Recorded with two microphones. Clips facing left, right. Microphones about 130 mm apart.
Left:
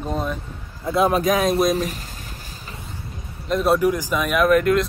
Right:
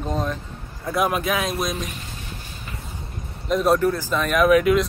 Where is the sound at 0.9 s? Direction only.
30° left (ahead or behind).